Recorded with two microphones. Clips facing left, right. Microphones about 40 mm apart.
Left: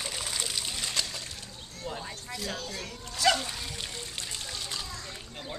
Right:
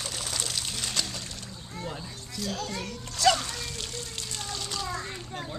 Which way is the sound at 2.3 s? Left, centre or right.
Centre.